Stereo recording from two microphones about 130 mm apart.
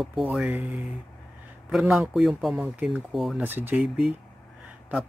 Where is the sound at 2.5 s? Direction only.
10° right (ahead or behind).